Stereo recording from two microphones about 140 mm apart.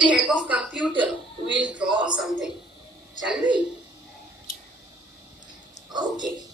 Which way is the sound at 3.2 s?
5° right (ahead or behind).